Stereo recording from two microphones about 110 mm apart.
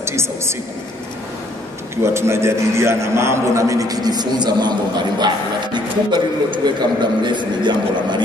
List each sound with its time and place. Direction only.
0.0 s a woman's voice: 25° right (ahead or behind)
2.1 s a man's voice: 25° right (ahead or behind); by 8.2 s 45° right (ahead or behind)